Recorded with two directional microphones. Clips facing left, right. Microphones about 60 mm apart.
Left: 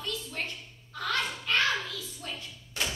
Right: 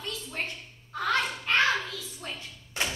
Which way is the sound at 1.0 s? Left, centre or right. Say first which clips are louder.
Right 4 dB; right.